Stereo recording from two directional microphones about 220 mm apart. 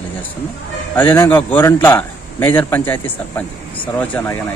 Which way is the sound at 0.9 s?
10° left (ahead or behind).